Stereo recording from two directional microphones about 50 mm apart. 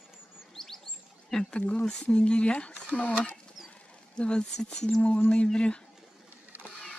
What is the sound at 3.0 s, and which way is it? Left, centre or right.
Speech, left.